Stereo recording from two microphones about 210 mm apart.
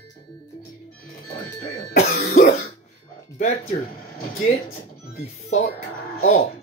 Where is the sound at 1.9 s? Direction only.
45° left (ahead or behind).